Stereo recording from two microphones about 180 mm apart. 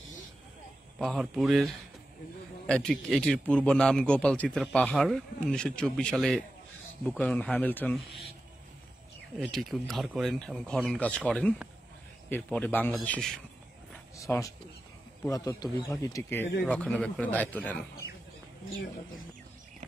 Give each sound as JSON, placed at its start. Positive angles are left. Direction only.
{"t": 0.9, "sound": "a man's voice", "side_deg": 0}
{"t": 9.4, "sound": "a man's voice", "side_deg": 0}
{"t": 14.1, "sound": "speech", "side_deg": 15}